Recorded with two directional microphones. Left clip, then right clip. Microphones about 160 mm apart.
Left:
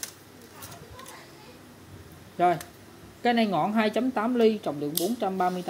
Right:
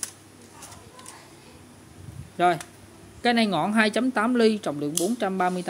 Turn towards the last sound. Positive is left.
turn(degrees=-30)  # may be behind; listen again after turning